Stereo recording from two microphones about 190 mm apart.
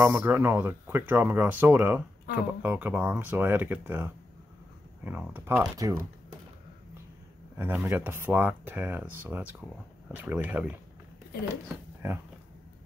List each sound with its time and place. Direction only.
0.0 s speech: 10° right (ahead or behind)
7.5 s speech: 10° right (ahead or behind)